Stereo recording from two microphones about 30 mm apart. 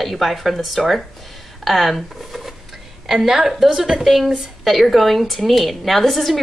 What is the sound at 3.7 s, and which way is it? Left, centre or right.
Speech, right.